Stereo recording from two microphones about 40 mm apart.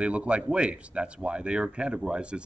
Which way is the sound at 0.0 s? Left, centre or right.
Right.